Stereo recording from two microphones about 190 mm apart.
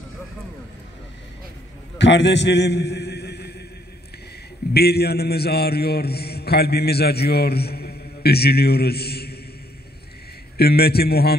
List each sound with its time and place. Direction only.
2.0 s a sound: 65° left (ahead or behind)
4.7 s a man's voice: 55° left (ahead or behind)
10.6 s a man's voice: 55° left (ahead or behind)